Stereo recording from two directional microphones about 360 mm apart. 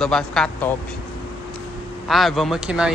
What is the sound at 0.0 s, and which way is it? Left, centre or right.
Speech, centre.